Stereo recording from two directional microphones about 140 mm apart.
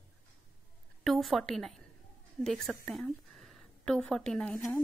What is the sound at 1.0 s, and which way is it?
A woman's voice, centre (ahead or behind).